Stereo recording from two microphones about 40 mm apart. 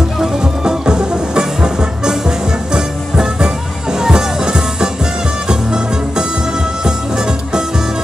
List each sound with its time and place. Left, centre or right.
0.2 s music: centre